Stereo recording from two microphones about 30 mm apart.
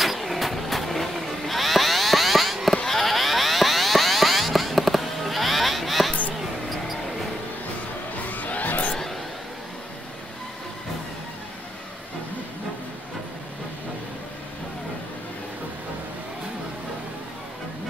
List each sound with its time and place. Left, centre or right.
0.0 s vehicle: centre
2.7 s boing: centre
8.3 s music: left